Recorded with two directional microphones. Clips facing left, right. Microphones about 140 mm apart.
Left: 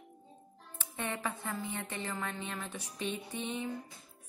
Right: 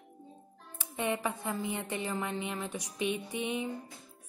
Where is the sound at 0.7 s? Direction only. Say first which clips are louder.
Right 6 dB; 15° right (ahead or behind).